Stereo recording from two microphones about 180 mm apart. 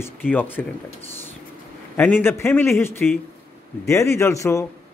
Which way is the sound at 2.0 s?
10° left (ahead or behind).